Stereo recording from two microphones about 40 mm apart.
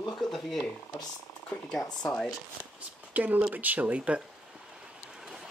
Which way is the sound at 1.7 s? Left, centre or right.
Centre.